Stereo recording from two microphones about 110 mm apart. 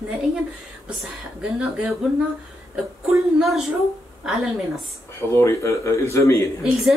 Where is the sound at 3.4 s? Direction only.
Centre (ahead or behind).